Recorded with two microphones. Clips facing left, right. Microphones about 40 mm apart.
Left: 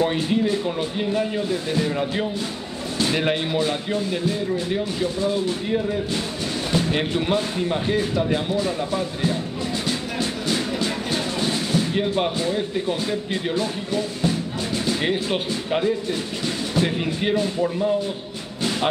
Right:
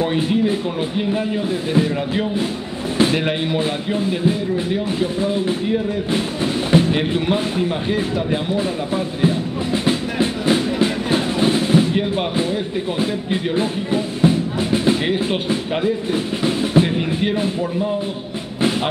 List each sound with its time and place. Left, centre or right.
0.0 s speech: centre
1.5 s speech: right
3.1 s speech: centre
3.5 s speech: right
6.4 s music: right
6.9 s speech: centre
8.5 s speech: right
9.8 s music: right
11.9 s speech: centre
13.0 s music: right
15.3 s speech: centre
16.1 s drum: right
16.8 s speech: centre